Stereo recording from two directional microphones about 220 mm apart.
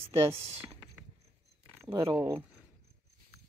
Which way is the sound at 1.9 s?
15° right (ahead or behind).